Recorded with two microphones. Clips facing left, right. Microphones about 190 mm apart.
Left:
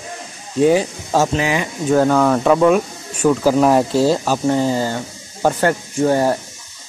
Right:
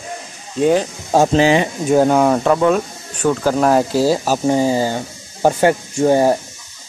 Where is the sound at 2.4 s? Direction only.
Centre (ahead or behind); by 6.4 s 15° right (ahead or behind).